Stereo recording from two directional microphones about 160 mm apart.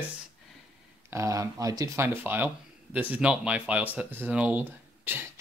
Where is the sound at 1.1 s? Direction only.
20° right (ahead or behind).